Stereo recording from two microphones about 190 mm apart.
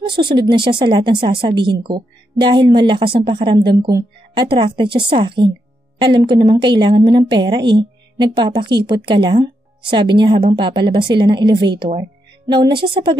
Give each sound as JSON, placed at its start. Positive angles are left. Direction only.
{"t": 0.0, "sound": "a woman's voice", "side_deg": -25}
{"t": 12.0, "sound": "music", "side_deg": -25}
{"t": 12.7, "sound": "a woman's voice", "side_deg": -25}